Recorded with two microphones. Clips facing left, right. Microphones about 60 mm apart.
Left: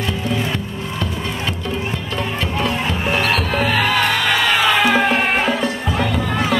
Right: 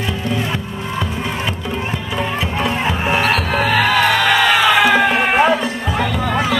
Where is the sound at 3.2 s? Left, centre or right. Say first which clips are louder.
Right 1 dB; centre.